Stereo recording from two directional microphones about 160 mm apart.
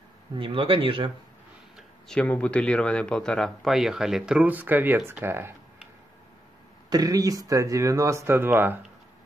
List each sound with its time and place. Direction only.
0.4 s speech: 35° right (ahead or behind)
1.8 s speech: 5° left (ahead or behind); by 5.5 s 15° right (ahead or behind)
6.9 s speech: 20° right (ahead or behind)